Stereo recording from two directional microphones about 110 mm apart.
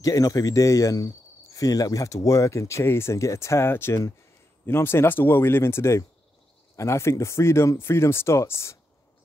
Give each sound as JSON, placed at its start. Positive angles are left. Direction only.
{"t": 0.0, "sound": "speech", "side_deg": 30}